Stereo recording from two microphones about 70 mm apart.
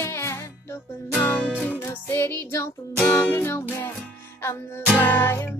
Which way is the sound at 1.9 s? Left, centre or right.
Left.